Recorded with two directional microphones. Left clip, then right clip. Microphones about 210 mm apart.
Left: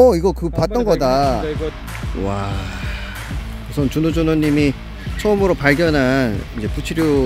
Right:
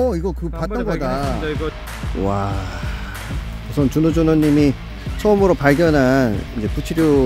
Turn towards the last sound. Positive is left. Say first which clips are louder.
# right 1 dB
turn(degrees=-5)  # may be behind; listen again after turning